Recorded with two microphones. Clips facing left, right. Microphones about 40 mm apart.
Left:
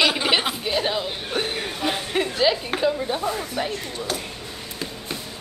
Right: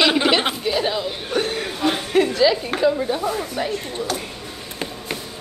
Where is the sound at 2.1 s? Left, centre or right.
Centre.